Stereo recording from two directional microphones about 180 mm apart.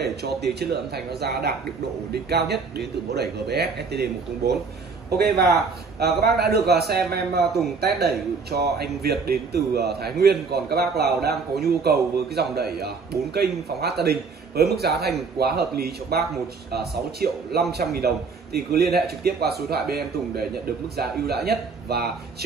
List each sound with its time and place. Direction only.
0.0 s a man's voice: 65° right (ahead or behind)